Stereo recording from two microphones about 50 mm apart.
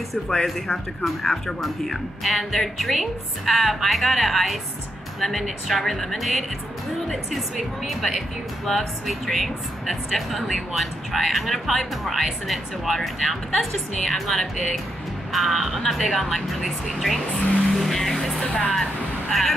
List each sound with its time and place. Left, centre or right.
0.3 s speech: centre
18.5 s speech: centre
18.8 s speech: centre